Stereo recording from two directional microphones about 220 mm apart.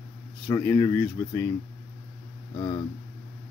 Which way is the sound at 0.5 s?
15° left (ahead or behind).